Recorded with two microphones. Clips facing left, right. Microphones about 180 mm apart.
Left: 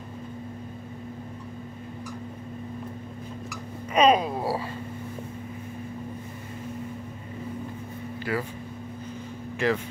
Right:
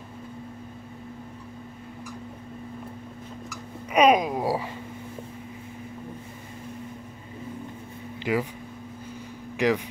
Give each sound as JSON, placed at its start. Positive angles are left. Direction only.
{"t": 3.9, "sound": "a sound", "side_deg": -10}
{"t": 8.2, "sound": "speech", "side_deg": -15}
{"t": 9.6, "sound": "speech", "side_deg": -15}